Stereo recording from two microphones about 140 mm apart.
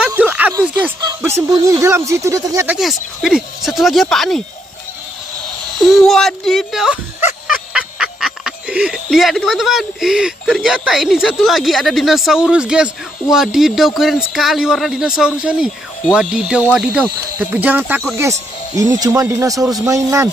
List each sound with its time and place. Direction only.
0.0 s a sound: 10° right (ahead or behind)
1.5 s speech: 20° right (ahead or behind)
2.7 s speech: centre (ahead or behind)
5.8 s speech: centre (ahead or behind); by 19.6 s 20° right (ahead or behind)
19.6 s speech: 5° right (ahead or behind)
19.9 s speech: 20° right (ahead or behind)